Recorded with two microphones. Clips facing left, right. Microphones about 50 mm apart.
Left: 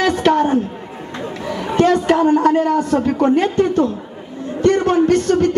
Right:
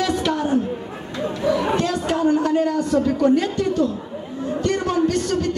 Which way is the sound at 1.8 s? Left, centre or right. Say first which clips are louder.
Left 7 dB; left.